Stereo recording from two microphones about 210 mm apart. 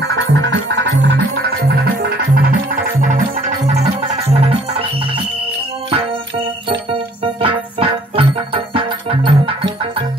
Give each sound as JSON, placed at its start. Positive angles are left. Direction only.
{"t": 0.3, "sound": "music", "side_deg": -55}
{"t": 4.3, "sound": "music", "side_deg": -30}
{"t": 7.4, "sound": "music", "side_deg": -25}